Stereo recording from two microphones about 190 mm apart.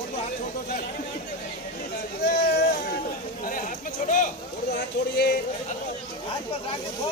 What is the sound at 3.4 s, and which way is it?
Speech, 45° left (ahead or behind).